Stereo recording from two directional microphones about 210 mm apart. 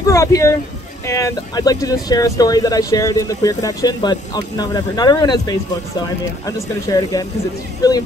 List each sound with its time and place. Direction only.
0.1 s speech: 15° left (ahead or behind)